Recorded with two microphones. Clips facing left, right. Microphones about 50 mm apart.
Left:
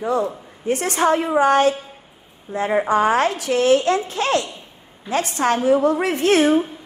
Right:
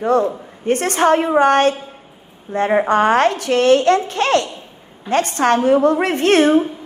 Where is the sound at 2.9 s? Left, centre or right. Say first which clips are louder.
Right 2 dB; right.